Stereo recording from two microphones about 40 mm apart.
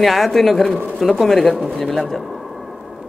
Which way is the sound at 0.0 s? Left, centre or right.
Centre.